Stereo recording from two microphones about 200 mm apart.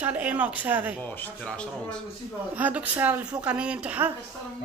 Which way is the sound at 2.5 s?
10° right (ahead or behind).